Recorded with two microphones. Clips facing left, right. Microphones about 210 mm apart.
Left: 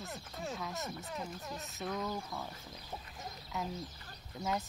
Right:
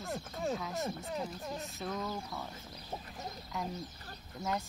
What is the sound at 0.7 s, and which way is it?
Speech, 30° right (ahead or behind).